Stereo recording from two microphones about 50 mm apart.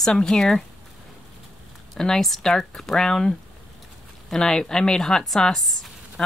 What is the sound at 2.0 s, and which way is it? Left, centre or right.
Speech, centre.